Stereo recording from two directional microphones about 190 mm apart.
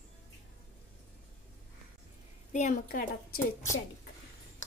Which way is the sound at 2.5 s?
40° left (ahead or behind).